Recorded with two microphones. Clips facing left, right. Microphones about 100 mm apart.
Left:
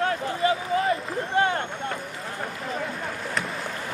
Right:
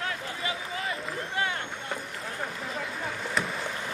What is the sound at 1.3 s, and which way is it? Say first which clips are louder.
Vehicle: left 9 dB; 40° left (ahead or behind).